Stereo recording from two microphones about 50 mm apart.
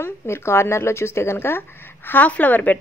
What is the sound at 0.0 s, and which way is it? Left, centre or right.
Speech, left.